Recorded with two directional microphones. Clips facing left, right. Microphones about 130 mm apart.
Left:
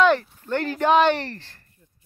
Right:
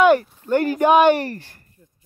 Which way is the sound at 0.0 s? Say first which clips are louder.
Right 4 dB; 10° right (ahead or behind).